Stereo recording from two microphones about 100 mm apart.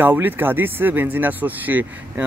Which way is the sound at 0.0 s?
20° right (ahead or behind).